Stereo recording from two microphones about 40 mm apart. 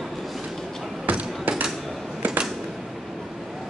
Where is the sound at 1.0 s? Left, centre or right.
Right.